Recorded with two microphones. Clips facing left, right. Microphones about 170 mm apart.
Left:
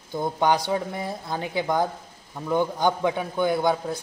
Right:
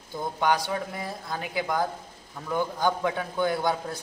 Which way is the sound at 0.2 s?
25° left (ahead or behind).